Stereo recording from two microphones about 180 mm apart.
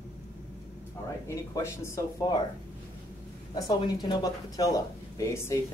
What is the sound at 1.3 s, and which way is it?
Speech, 15° left (ahead or behind).